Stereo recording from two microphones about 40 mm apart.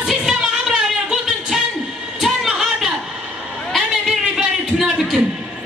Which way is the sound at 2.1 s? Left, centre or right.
Centre.